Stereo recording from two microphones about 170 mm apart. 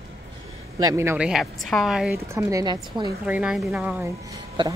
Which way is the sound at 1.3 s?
Centre (ahead or behind).